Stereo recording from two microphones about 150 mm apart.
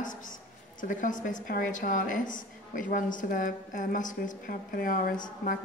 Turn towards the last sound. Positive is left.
turn(degrees=65)  # may be behind; listen again after turning